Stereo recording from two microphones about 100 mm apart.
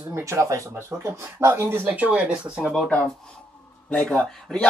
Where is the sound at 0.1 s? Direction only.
30° right (ahead or behind).